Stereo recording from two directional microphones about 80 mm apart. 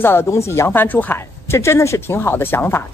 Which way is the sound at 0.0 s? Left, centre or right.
Left.